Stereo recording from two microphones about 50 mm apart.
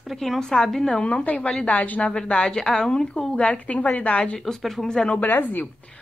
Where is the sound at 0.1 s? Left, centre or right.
Centre.